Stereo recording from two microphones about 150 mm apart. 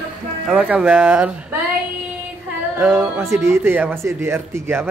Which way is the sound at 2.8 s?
10° right (ahead or behind).